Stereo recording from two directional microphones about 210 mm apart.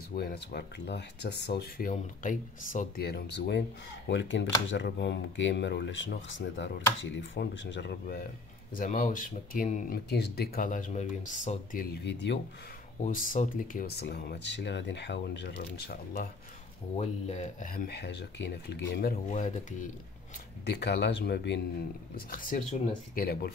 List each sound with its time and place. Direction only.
0.1 s speech: 45° left (ahead or behind)
8.7 s speech: 40° left (ahead or behind)
10.0 s speech: 50° left (ahead or behind)
13.0 s speech: 40° left (ahead or behind)
16.9 s speech: 30° left (ahead or behind)
20.6 s speech: 50° left (ahead or behind)
22.3 s speech: 40° left (ahead or behind)